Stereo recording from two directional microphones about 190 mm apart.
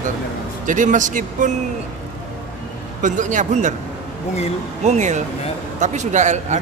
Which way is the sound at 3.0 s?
40° right (ahead or behind).